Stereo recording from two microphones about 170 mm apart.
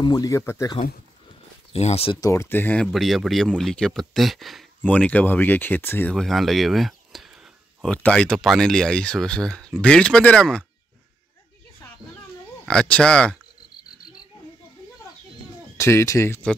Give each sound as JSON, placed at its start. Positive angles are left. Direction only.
{"t": 0.0, "sound": "speech", "side_deg": 25}
{"t": 1.7, "sound": "speech", "side_deg": 35}
{"t": 2.1, "sound": "speech", "side_deg": 20}
{"t": 12.6, "sound": "speech", "side_deg": 5}
{"t": 15.8, "sound": "speech", "side_deg": 15}